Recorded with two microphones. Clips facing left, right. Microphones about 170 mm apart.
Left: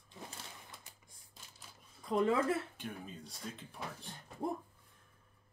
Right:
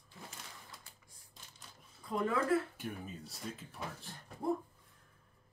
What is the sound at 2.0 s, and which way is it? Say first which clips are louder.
Speech: left 3 dB; 20° left (ahead or behind).